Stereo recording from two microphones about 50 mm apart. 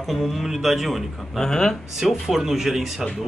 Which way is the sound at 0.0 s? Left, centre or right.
Centre.